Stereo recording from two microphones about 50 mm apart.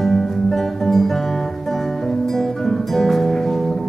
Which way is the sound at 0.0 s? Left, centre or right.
Centre.